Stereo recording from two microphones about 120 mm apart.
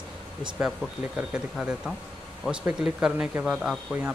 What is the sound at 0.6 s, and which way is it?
Speech, 10° right (ahead or behind).